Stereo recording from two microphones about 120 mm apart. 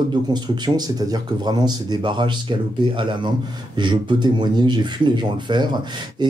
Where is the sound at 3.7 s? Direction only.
40° right (ahead or behind).